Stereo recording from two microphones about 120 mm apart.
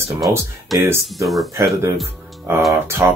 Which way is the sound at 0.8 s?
20° right (ahead or behind).